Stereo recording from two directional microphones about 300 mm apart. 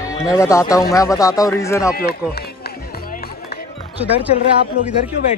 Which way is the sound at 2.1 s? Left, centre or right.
Left.